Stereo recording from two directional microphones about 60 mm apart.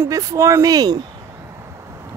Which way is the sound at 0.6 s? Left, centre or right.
Right.